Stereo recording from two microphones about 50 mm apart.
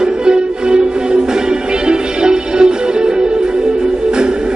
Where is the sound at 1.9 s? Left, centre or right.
Centre.